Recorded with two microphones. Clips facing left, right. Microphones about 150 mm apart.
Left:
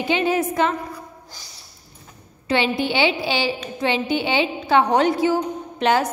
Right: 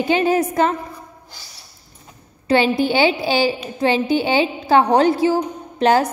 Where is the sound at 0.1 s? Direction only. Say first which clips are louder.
Right 3 dB; 40° right (ahead or behind).